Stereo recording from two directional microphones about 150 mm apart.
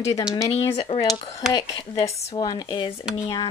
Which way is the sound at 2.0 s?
45° left (ahead or behind).